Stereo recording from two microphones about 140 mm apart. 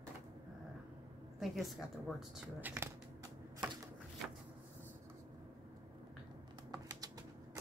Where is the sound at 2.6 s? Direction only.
15° right (ahead or behind).